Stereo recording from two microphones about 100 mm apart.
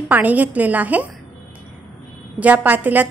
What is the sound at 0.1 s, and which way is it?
Speech, 15° right (ahead or behind).